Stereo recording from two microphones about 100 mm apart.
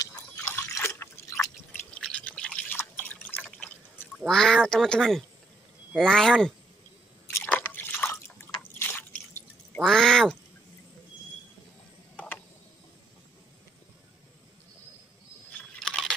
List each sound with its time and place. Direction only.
0.4 s liquid: 30° left (ahead or behind)
1.9 s drip: 10° left (ahead or behind)
4.3 s speech: 5° left (ahead or behind)
7.4 s drip: 15° left (ahead or behind)
9.8 s speech: 5° left (ahead or behind)
15.8 s computer keyboard: 5° left (ahead or behind)